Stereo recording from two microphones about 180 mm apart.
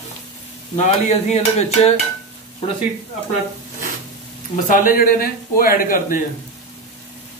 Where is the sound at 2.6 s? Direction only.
30° left (ahead or behind).